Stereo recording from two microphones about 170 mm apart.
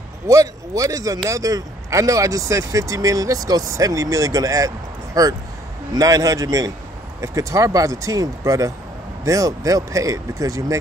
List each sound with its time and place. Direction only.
0.3 s speech: 20° right (ahead or behind)